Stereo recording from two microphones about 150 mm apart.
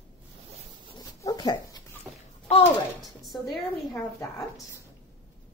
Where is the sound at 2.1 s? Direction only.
20° right (ahead or behind).